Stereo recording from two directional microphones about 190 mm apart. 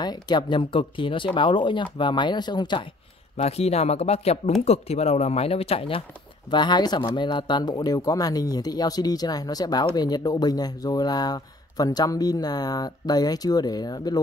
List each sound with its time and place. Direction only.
0.0 s speech: 20° left (ahead or behind)
3.3 s speech: 35° left (ahead or behind)